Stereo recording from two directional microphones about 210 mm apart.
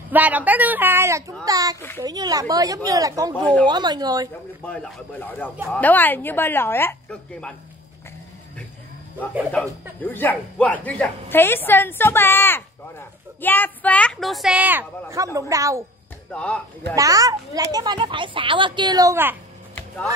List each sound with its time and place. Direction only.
0.1 s a child's voice: 5° right (ahead or behind)
4.6 s speech: 5° left (ahead or behind)
9.5 s a child's voice: 5° left (ahead or behind); by 15.8 s 15° right (ahead or behind)
16.3 s speech: 5° left (ahead or behind)
16.9 s a child's voice: 15° right (ahead or behind)